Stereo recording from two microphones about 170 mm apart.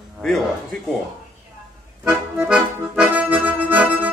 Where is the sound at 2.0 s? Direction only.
5° right (ahead or behind).